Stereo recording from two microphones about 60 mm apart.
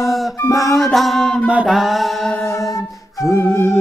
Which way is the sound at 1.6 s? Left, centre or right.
Centre.